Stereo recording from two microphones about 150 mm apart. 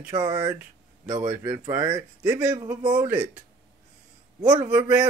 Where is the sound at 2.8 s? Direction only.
30° right (ahead or behind).